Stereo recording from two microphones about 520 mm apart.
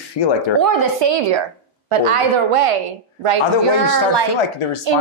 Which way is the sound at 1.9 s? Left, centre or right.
Right.